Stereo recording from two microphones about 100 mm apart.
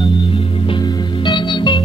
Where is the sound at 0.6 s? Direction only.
50° left (ahead or behind).